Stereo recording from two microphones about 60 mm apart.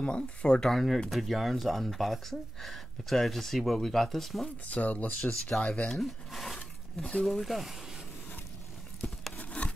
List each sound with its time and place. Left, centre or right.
0.0 s speech: centre
4.6 s speech: left
5.9 s speech: centre
7.2 s speech: centre
9.4 s a sound: centre